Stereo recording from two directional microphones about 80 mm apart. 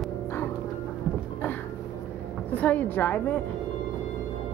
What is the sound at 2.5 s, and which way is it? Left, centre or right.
Speech, left.